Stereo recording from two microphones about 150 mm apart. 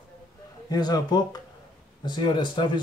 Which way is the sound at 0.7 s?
25° left (ahead or behind).